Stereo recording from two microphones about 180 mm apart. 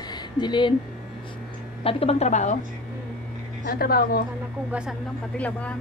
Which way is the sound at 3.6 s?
55° left (ahead or behind).